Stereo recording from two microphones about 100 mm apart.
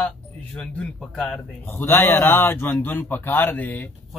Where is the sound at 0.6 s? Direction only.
5° left (ahead or behind).